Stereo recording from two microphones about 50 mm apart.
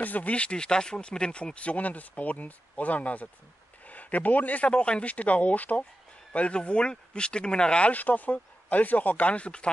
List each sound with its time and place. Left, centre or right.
0.0 s speech: left
7.9 s speech: left